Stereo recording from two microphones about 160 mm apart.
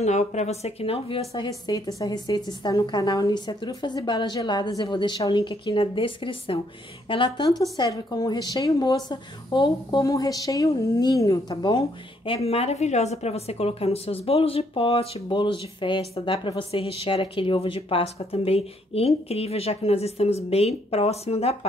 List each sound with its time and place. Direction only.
0.0 s a woman's voice: 45° left (ahead or behind)
1.3 s a woman's voice: 25° left (ahead or behind)
12.3 s a woman's voice: 40° left (ahead or behind)